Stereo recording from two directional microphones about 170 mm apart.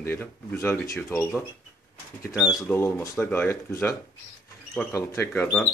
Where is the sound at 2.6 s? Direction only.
15° left (ahead or behind).